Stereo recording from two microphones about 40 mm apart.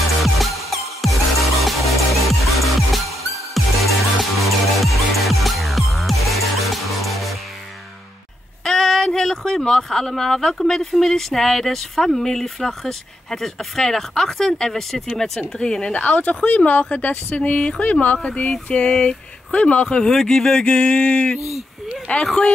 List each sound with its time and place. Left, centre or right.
0.2 s music: centre
8.6 s speech: centre
15.8 s speech: left
20.1 s speech: centre
20.6 s speech: left
22.2 s speech: centre